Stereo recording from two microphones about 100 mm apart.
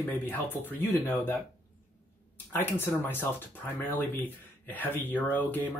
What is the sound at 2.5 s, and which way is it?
Speech, 20° left (ahead or behind).